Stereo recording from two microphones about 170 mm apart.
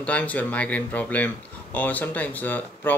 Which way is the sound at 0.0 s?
10° left (ahead or behind).